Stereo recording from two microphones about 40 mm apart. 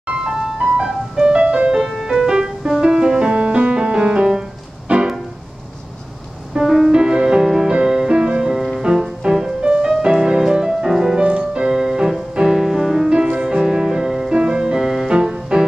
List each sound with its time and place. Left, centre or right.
0.1 s ice cream truck: centre
1.2 s music: right
1.7 s music: centre
4.9 s music: right
6.5 s music: centre
9.3 s music: centre; by 11.7 s right
11.7 s music: centre
13.1 s music: right
14.3 s music: right
14.8 s music: centre